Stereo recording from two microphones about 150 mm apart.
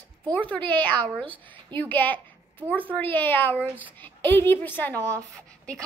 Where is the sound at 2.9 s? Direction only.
10° left (ahead or behind).